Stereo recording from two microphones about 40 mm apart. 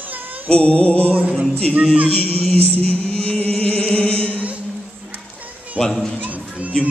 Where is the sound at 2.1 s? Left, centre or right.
Left.